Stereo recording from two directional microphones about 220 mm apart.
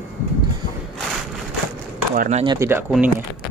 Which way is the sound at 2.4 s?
15° right (ahead or behind).